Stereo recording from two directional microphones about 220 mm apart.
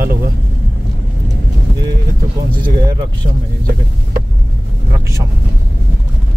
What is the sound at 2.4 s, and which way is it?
Speech, 20° right (ahead or behind).